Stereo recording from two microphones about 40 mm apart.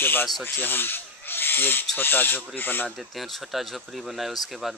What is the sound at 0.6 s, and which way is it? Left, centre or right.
Rub, left.